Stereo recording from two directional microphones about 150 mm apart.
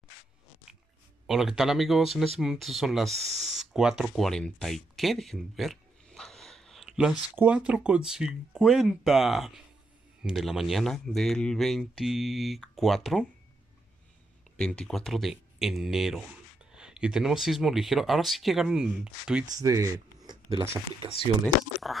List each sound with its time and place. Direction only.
1.2 s speech: centre (ahead or behind)
14.6 s speech: 5° left (ahead or behind)
19.4 s speech: 20° right (ahead or behind)
21.8 s speech: centre (ahead or behind)